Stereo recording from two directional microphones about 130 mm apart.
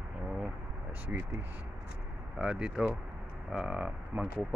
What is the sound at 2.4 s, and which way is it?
Speech, 5° right (ahead or behind).